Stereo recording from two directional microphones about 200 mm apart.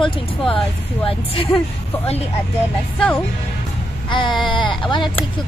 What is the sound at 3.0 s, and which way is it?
Speech, 5° left (ahead or behind).